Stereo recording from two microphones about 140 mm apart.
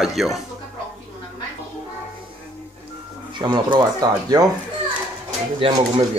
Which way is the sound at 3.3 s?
30° right (ahead or behind).